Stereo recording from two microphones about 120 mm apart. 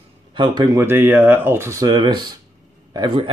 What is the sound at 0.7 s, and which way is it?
Speech, 20° right (ahead or behind).